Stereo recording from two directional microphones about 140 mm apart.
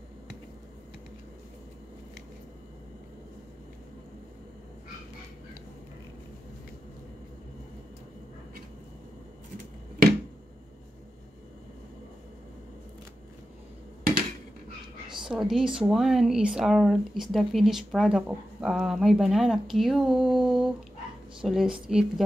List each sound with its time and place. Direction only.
15.2 s speech: 5° right (ahead or behind)